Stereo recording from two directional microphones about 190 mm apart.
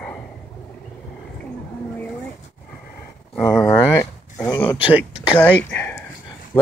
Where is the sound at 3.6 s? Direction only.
15° left (ahead or behind).